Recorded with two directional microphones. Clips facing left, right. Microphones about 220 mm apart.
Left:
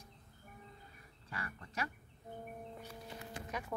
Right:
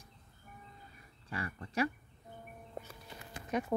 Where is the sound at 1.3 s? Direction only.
30° right (ahead or behind).